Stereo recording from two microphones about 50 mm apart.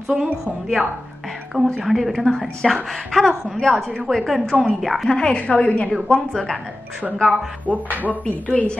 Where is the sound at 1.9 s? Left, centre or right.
Centre.